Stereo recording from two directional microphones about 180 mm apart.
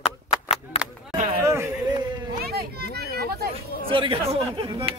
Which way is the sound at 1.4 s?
15° right (ahead or behind).